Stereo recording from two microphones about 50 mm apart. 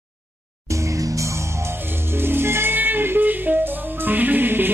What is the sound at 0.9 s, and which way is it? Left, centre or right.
Music, right.